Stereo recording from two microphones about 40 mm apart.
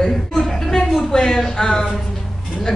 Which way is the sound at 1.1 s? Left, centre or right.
Centre.